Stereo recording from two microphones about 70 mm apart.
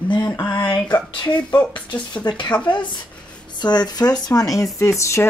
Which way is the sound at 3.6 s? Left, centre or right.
Left.